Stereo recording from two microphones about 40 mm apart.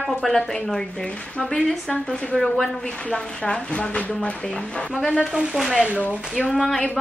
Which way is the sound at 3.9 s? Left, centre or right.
Left.